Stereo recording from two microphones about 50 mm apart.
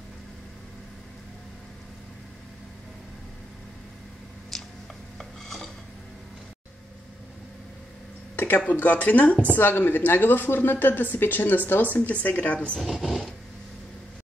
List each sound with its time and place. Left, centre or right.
4.5 s a sound: centre
8.5 s a woman's voice: left
9.6 s a woman's voice: left
12.8 s speech: centre